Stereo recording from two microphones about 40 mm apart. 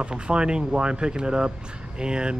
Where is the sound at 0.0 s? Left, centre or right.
Right.